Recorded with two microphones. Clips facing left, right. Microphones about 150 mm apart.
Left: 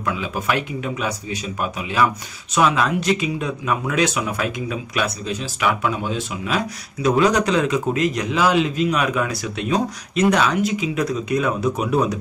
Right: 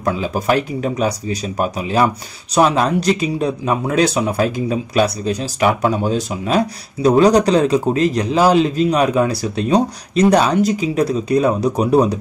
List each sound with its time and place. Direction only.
0.0 s speech: 35° right (ahead or behind)